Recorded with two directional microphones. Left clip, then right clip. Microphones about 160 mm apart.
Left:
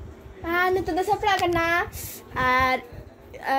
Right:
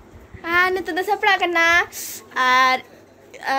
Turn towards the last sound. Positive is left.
turn(degrees=10)  # may be behind; listen again after turning